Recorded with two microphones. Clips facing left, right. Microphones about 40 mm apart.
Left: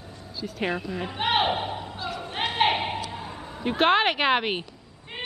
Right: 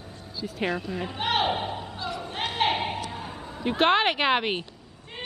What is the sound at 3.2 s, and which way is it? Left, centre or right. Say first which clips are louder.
Speech: even; centre.